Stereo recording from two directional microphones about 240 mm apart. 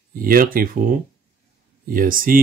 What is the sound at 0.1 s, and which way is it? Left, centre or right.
Speech, right.